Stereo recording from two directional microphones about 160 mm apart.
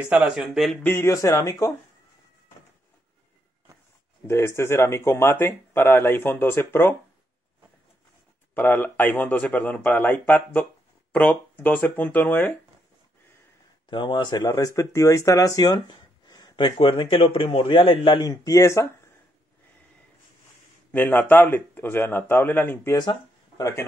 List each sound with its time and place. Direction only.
0.1 s speech: 5° right (ahead or behind)
0.8 s speech: 15° left (ahead or behind)
4.3 s speech: 15° left (ahead or behind)
8.5 s speech: 15° left (ahead or behind)
13.8 s speech: 30° left (ahead or behind)
20.9 s speech: 10° left (ahead or behind)